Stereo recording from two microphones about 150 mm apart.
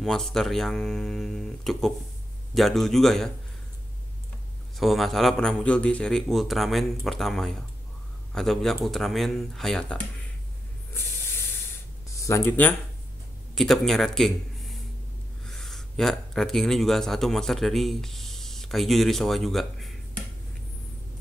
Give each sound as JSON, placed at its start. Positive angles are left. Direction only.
{"t": 0.0, "sound": "a man's voice", "side_deg": 5}
{"t": 4.7, "sound": "a man's voice", "side_deg": 0}
{"t": 12.2, "sound": "speech", "side_deg": 20}
{"t": 13.6, "sound": "a man's voice", "side_deg": 0}